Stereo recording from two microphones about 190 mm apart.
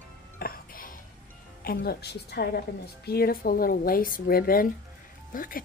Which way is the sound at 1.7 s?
55° left (ahead or behind).